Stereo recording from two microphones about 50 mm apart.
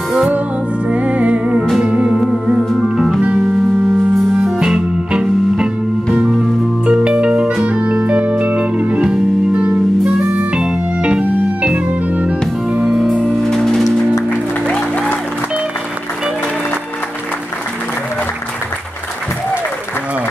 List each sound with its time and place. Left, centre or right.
0.8 s music: right
4.6 s music: centre
6.9 s music: right
10.3 s organ: right
12.8 s music: centre
13.5 s music: centre